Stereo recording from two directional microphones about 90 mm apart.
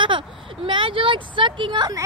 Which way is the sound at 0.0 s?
65° right (ahead or behind).